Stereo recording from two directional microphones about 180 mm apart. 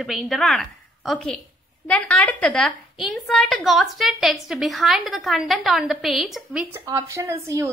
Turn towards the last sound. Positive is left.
turn(degrees=-15)  # may be behind; listen again after turning